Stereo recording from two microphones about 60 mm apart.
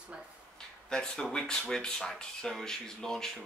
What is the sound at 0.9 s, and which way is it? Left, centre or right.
Speech, centre.